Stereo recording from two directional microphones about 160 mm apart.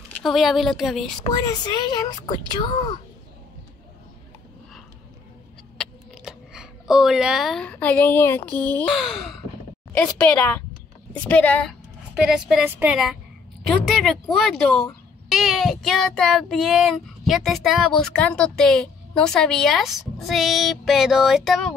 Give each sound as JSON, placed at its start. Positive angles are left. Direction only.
{"t": 0.1, "sound": "child singing", "side_deg": 0}
{"t": 1.2, "sound": "speech", "side_deg": 25}
{"t": 5.8, "sound": "speech", "side_deg": -5}
{"t": 8.9, "sound": "child singing", "side_deg": 0}
{"t": 9.9, "sound": "a woman's voice", "side_deg": 10}
{"t": 12.2, "sound": "child singing", "side_deg": -5}